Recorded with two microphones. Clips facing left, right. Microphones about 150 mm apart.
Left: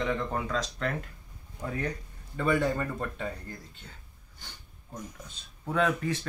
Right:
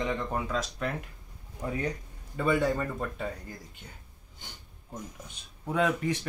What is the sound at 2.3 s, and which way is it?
Speech, 5° right (ahead or behind).